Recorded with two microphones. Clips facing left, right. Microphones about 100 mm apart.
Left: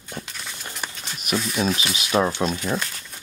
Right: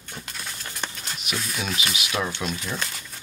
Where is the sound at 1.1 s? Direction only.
45° left (ahead or behind).